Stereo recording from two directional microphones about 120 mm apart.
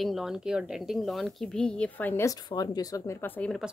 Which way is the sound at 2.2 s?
35° left (ahead or behind).